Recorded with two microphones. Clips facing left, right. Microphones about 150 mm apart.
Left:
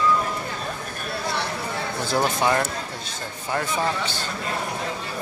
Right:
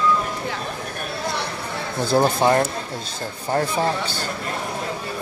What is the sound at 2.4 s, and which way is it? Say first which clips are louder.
A man's voice: right 4 dB; 35° right (ahead or behind).